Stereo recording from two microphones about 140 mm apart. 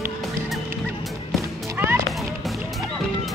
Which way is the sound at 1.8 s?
15° right (ahead or behind).